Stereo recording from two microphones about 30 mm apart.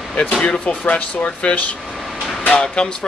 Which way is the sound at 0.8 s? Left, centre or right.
Left.